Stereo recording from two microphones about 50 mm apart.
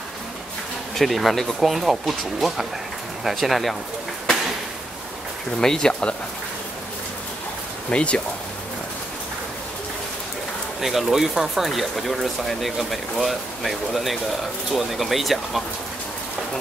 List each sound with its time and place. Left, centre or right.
0.9 s speech: centre
1.7 s speech: centre
5.6 s speech: centre
7.9 s speech: left
10.8 s speech: centre